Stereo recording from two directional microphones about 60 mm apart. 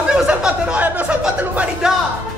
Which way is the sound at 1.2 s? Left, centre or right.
Centre.